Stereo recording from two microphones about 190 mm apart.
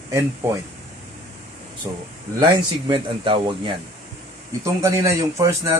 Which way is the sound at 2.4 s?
25° right (ahead or behind).